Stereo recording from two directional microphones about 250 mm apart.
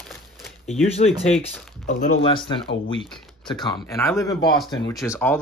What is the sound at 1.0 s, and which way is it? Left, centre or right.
Speech, left.